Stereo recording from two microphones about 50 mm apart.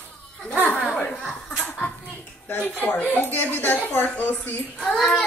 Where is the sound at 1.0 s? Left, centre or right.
Left.